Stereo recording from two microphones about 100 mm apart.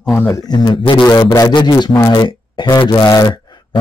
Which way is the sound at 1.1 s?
35° left (ahead or behind).